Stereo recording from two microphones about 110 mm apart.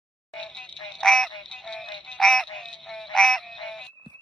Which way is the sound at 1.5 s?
5° left (ahead or behind).